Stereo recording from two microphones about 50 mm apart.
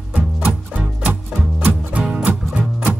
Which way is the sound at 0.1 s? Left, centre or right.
Right.